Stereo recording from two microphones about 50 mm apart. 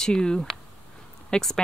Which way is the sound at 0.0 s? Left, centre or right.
Centre.